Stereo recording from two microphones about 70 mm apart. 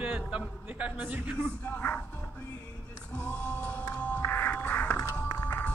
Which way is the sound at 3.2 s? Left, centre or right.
Left.